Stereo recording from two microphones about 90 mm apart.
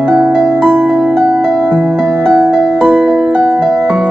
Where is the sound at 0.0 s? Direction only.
15° right (ahead or behind).